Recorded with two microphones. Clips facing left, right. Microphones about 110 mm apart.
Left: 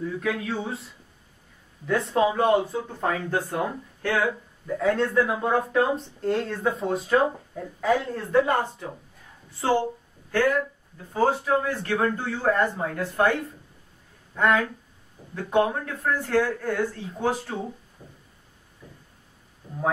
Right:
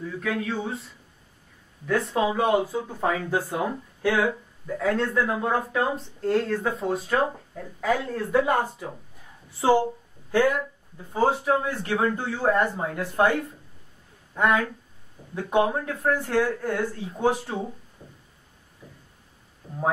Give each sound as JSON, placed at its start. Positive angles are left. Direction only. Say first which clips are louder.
{"t": 0.0, "sound": "speech", "louder": "left 1 dB", "side_deg": 0}
{"t": 1.9, "sound": "speech", "louder": "left 1 dB", "side_deg": 0}
{"t": 10.3, "sound": "speech", "louder": "right 1 dB", "side_deg": -15}
{"t": 18.0, "sound": "music", "louder": "even", "side_deg": 5}
{"t": 19.6, "sound": "speech", "louder": "even", "side_deg": -5}